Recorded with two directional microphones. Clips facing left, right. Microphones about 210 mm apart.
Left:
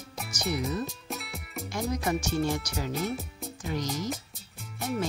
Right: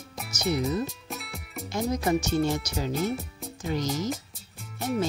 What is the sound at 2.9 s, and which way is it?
A child's voice, centre (ahead or behind).